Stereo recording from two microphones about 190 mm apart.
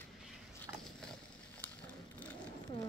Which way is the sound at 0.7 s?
15° right (ahead or behind).